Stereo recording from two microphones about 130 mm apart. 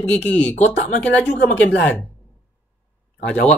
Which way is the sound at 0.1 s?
10° left (ahead or behind).